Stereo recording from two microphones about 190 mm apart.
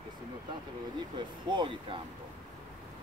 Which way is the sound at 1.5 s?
25° right (ahead or behind).